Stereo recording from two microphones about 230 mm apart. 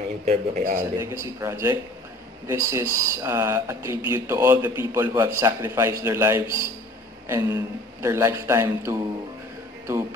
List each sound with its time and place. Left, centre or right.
0.2 s a man's voice: right
0.9 s a man's voice: centre